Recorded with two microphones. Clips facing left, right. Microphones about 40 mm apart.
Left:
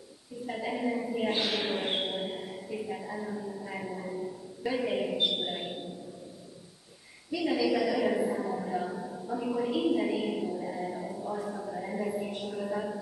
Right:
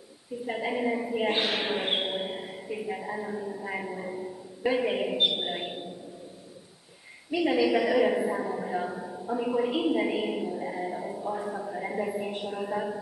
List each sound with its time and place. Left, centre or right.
0.5 s a woman's voice: right
5.3 s a sound: right
7.2 s a woman's voice: right